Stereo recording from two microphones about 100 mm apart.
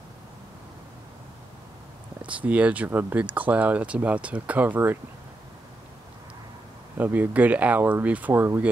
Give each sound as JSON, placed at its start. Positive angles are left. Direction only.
{"t": 2.2, "sound": "speech", "side_deg": -15}
{"t": 7.0, "sound": "speech", "side_deg": -20}